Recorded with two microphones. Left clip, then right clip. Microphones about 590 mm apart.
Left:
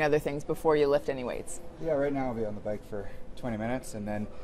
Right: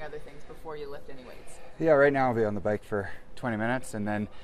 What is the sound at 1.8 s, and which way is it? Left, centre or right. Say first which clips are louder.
Speech: right 8 dB; right.